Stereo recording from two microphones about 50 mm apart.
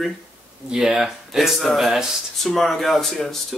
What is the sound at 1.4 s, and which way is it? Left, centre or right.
Speech, centre.